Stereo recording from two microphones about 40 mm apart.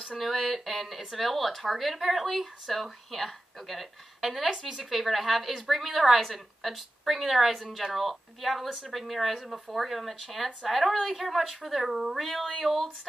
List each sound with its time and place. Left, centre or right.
0.2 s speech: centre